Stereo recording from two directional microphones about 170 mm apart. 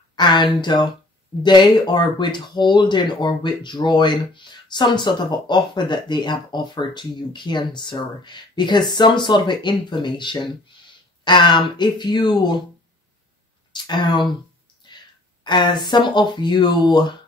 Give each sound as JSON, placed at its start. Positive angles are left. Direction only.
{"t": 0.1, "sound": "a sound", "side_deg": 25}
{"t": 1.4, "sound": "speech", "side_deg": 25}
{"t": 13.8, "sound": "speech", "side_deg": 25}